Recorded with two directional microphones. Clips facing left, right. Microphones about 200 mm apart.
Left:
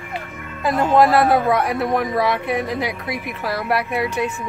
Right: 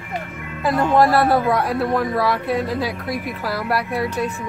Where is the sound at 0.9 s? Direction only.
20° left (ahead or behind).